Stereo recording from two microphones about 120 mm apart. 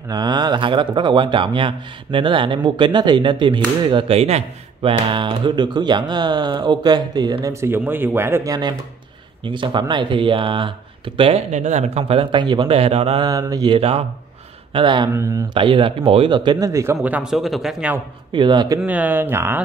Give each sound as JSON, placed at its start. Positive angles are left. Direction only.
{"t": 0.1, "sound": "speech", "side_deg": -35}
{"t": 7.4, "sound": "speech", "side_deg": -20}
{"t": 9.4, "sound": "speech", "side_deg": -45}
{"t": 11.5, "sound": "speech", "side_deg": -75}
{"t": 12.6, "sound": "speech", "side_deg": -55}
{"t": 13.2, "sound": "speech", "side_deg": -30}
{"t": 13.7, "sound": "speech", "side_deg": -55}
{"t": 14.7, "sound": "speech", "side_deg": -45}
{"t": 15.1, "sound": "speech", "side_deg": -25}
{"t": 15.5, "sound": "speech", "side_deg": -45}
{"t": 17.0, "sound": "speech", "side_deg": -10}
{"t": 18.3, "sound": "speech", "side_deg": -40}
{"t": 18.9, "sound": "speech", "side_deg": -15}